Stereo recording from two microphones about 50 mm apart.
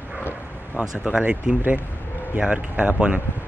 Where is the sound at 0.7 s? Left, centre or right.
Centre.